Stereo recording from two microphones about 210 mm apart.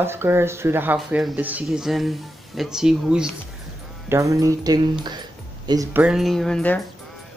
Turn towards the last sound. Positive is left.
turn(degrees=5)  # may be behind; listen again after turning